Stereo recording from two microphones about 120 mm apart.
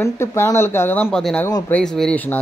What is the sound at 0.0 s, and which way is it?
Speech, 20° left (ahead or behind).